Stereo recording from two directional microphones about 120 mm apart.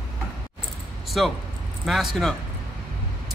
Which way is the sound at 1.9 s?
Centre (ahead or behind).